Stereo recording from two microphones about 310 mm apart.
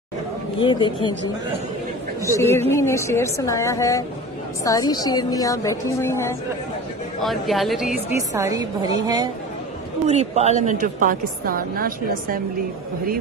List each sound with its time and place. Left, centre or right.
0.6 s a woman's voice: centre
2.3 s a woman's voice: centre
8.4 s a woman's voice: centre; by 12.4 s right